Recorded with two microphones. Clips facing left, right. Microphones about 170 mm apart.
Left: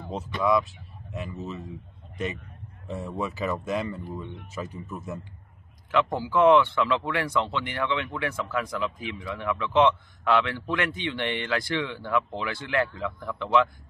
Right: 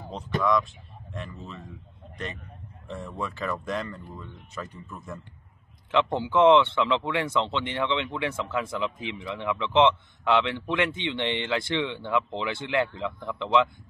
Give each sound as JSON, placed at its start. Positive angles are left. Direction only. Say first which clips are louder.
{"t": 0.4, "sound": "speech", "louder": "left 1 dB", "side_deg": 5}
{"t": 2.9, "sound": "speech", "louder": "left 3 dB", "side_deg": 10}
{"t": 4.6, "sound": "speech", "louder": "left 3 dB", "side_deg": 20}
{"t": 5.9, "sound": "speech", "louder": "even", "side_deg": -25}